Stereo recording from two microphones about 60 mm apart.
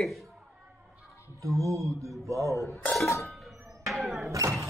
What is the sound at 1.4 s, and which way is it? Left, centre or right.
Music, right.